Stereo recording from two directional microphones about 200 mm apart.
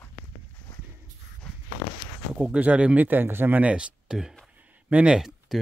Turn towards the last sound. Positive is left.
turn(degrees=-5)  # may be behind; listen again after turning